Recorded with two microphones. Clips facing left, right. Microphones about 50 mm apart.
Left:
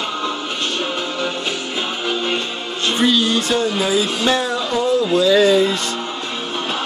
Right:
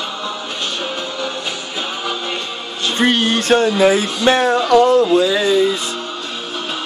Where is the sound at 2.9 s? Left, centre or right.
Right.